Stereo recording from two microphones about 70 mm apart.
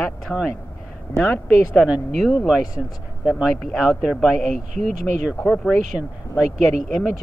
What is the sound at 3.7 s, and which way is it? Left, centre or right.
Speech, centre.